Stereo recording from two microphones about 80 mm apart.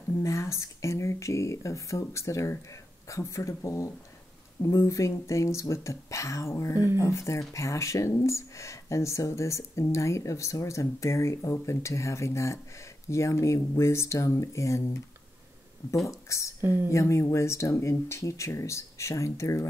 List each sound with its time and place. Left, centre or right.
0.2 s speech: left
16.1 s speech: left
16.6 s speech: right
16.9 s speech: left